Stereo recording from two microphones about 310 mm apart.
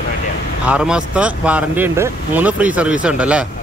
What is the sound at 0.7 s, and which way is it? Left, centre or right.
Speech, centre.